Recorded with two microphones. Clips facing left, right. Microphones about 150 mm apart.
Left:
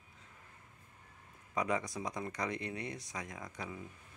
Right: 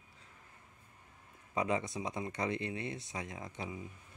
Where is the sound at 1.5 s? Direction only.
25° right (ahead or behind).